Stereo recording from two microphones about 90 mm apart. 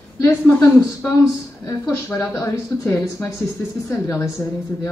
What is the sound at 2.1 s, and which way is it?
A woman's voice, 35° left (ahead or behind).